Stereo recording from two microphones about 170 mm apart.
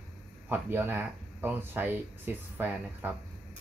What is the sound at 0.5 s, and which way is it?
Speech, 10° right (ahead or behind).